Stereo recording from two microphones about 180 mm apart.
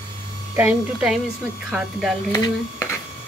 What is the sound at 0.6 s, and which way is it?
Speech, 5° right (ahead or behind).